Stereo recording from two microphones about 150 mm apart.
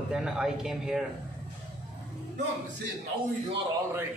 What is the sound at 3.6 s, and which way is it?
Speech, 20° right (ahead or behind).